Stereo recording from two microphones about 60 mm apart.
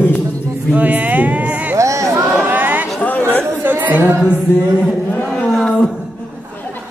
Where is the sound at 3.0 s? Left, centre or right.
Left.